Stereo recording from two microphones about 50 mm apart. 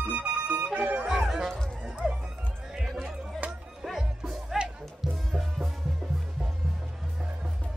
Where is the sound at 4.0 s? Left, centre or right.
Centre.